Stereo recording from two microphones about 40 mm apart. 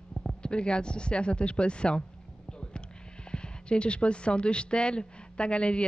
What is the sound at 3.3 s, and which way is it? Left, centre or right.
Speech, left.